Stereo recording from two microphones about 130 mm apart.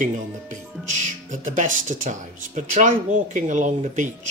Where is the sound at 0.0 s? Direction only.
75° right (ahead or behind).